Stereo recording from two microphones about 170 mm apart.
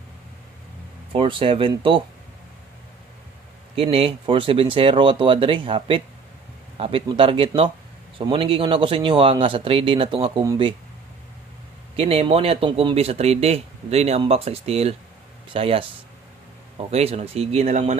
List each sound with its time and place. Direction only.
1.1 s speech: 30° right (ahead or behind)
3.7 s speech: 35° right (ahead or behind)
12.0 s speech: 35° right (ahead or behind)